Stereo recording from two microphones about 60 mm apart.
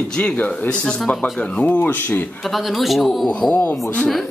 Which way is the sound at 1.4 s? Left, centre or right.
Left.